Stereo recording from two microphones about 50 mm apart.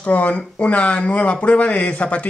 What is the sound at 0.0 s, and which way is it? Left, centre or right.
Speech, left.